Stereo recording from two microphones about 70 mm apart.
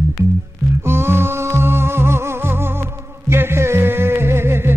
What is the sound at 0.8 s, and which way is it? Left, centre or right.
Music, right.